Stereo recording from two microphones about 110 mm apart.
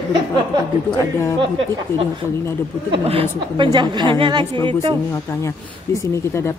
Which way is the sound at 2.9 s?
60° right (ahead or behind).